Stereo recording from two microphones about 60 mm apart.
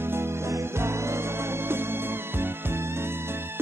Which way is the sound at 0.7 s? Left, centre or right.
Right.